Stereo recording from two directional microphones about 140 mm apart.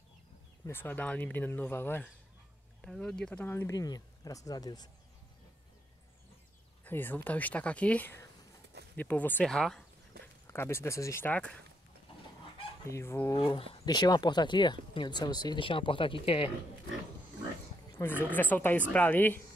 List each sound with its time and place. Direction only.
0.7 s speech: 15° left (ahead or behind)
2.8 s speech: 5° left (ahead or behind)
3.7 s speech: 25° left (ahead or behind)
6.8 s speech: 15° left (ahead or behind)
10.4 s speech: 15° left (ahead or behind)
12.9 s speech: 20° left (ahead or behind)
13.4 s speech: 35° left (ahead or behind)
17.9 s speech: 15° left (ahead or behind)